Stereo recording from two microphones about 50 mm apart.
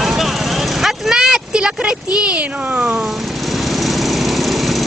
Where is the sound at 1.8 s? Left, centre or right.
Right.